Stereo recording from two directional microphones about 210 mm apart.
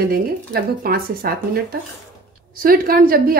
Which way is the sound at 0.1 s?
45° right (ahead or behind).